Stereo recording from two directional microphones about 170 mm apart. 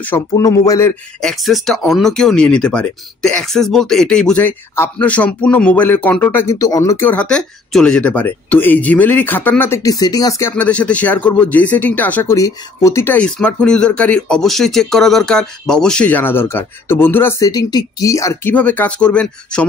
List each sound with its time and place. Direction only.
0.1 s speech: 20° left (ahead or behind)
1.2 s speech: centre (ahead or behind); by 10.5 s 20° left (ahead or behind)
10.5 s speech: 5° left (ahead or behind)